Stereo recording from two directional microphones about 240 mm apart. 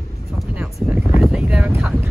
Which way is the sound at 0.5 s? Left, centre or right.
Centre.